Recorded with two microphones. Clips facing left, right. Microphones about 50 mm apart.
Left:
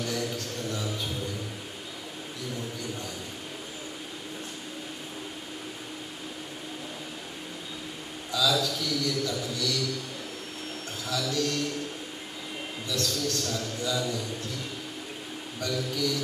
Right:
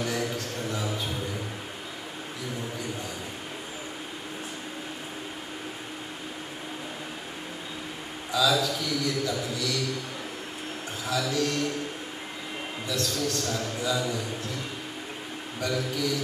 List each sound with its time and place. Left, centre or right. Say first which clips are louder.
0.0 s a sound: right 2 dB; centre
8.3 s a man's voice: right 2 dB; centre
11.1 s a man's voice: right 2 dB; centre
12.9 s a man's voice: right 1 dB; centre
15.6 s a man's voice: right 1 dB; centre